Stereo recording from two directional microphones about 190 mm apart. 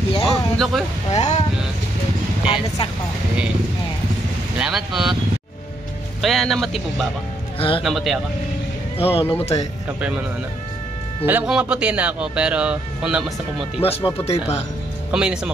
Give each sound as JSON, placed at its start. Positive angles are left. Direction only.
{"t": 0.3, "sound": "a sound", "side_deg": 0}
{"t": 1.1, "sound": "speech", "side_deg": 35}
{"t": 2.4, "sound": "speech", "side_deg": 25}
{"t": 4.6, "sound": "speech", "side_deg": -5}
{"t": 6.2, "sound": "speech", "side_deg": 0}
{"t": 7.5, "sound": "a man's voice", "side_deg": 30}
{"t": 7.8, "sound": "speech", "side_deg": 0}
{"t": 8.9, "sound": "speech", "side_deg": 30}
{"t": 9.9, "sound": "speech", "side_deg": -5}
{"t": 11.2, "sound": "speech", "side_deg": -5}
{"t": 13.7, "sound": "speech", "side_deg": 30}
{"t": 15.0, "sound": "speech", "side_deg": -5}